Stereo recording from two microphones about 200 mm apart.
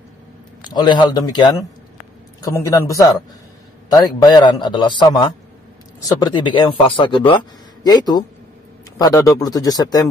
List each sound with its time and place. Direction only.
0.6 s a man's voice: 20° left (ahead or behind)